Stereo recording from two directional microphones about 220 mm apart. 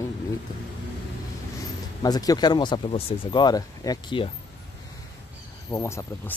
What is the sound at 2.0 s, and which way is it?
Speech, 15° left (ahead or behind).